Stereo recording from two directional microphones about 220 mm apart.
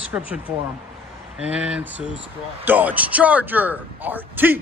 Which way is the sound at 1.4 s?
5° right (ahead or behind).